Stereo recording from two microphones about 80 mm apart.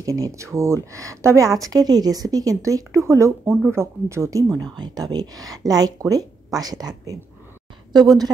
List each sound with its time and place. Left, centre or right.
0.0 s speech: right
1.6 s speech: right
3.4 s speech: centre
3.7 s speech: right
4.6 s speech: right